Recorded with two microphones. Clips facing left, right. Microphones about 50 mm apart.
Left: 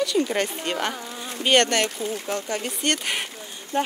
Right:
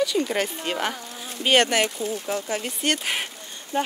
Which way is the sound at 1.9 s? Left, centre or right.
Left.